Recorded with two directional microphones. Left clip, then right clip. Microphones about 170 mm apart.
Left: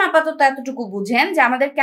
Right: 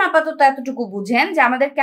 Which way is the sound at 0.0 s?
10° right (ahead or behind).